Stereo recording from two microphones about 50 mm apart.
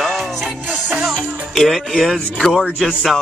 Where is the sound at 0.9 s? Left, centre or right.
Centre.